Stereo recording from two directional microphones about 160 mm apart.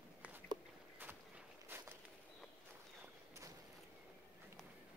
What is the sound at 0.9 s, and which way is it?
Walk, 10° right (ahead or behind).